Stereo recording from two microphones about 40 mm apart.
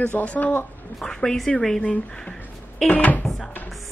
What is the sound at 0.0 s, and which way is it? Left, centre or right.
Speech, left.